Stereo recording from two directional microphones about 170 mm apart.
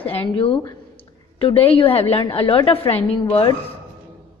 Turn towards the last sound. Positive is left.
turn(degrees=35)  # may be behind; listen again after turning